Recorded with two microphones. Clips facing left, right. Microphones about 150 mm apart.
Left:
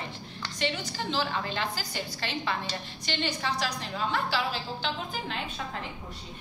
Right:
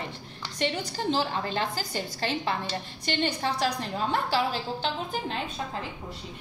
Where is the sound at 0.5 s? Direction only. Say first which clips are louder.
Right 2 dB; 45° right (ahead or behind).